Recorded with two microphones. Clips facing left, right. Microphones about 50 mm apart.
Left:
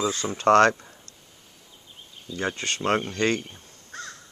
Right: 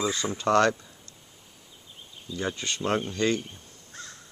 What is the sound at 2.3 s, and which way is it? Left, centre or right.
Speech, left.